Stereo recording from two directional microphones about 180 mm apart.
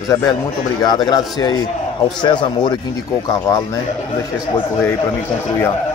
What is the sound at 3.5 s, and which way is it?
Speech, 15° left (ahead or behind).